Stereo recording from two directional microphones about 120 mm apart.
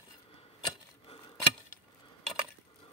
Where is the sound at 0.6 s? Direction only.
40° left (ahead or behind).